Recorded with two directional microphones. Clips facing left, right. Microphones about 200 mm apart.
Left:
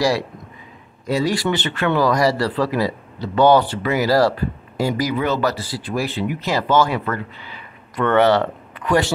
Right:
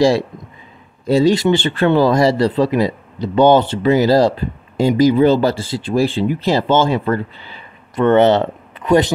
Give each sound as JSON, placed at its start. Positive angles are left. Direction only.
{"t": 1.0, "sound": "speech", "side_deg": -25}